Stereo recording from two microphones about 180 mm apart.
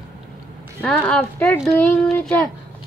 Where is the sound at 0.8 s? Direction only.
5° left (ahead or behind).